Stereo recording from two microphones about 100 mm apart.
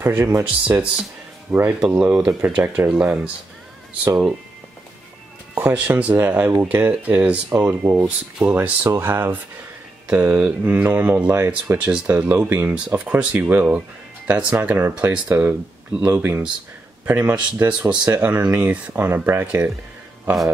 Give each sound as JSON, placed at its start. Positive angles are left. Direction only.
{"t": 0.0, "sound": "speech", "side_deg": -20}
{"t": 5.5, "sound": "speech", "side_deg": -15}